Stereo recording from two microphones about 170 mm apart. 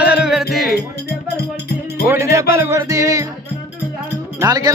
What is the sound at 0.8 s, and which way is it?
Music, 70° left (ahead or behind).